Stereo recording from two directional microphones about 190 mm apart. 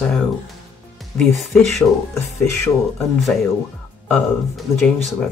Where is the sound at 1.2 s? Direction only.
Centre (ahead or behind).